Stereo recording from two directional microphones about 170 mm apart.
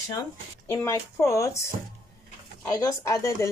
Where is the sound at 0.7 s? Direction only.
15° left (ahead or behind).